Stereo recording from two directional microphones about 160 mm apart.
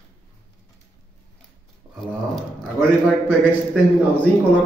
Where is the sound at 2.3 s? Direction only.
Centre (ahead or behind).